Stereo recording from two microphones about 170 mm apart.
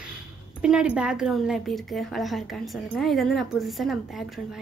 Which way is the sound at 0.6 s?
5° right (ahead or behind).